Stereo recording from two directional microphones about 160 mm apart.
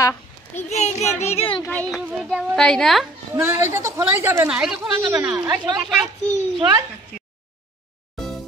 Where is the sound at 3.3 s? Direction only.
15° right (ahead or behind).